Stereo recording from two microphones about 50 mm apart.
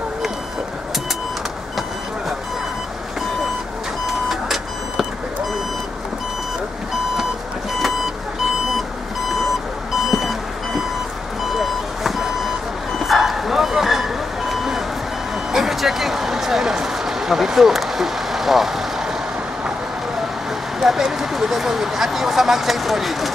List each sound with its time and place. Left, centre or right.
4.3 s printer: centre
8.5 s vehicle: centre
11.5 s vehicle: centre
15.5 s a sound: centre
20.8 s vehicle: centre